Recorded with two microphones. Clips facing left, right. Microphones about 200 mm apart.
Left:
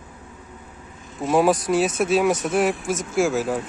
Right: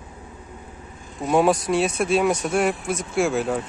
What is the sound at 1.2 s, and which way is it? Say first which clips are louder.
Speech: even; centre (ahead or behind).